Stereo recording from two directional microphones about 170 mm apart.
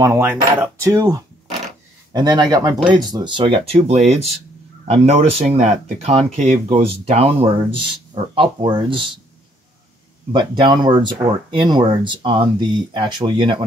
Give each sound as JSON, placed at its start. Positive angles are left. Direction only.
{"t": 0.0, "sound": "speech", "side_deg": -15}
{"t": 10.3, "sound": "speech", "side_deg": -25}